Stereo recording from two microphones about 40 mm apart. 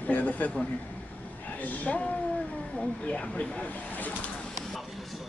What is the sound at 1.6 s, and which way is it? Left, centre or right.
Speech, left.